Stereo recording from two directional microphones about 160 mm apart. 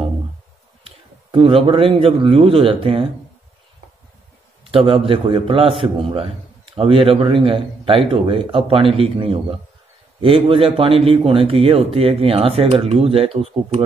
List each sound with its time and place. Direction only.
0.8 s a man's voice: 35° right (ahead or behind)
4.6 s speech: 35° right (ahead or behind)